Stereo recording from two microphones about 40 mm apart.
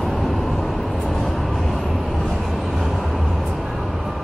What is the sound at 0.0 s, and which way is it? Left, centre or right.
Vehicle, centre.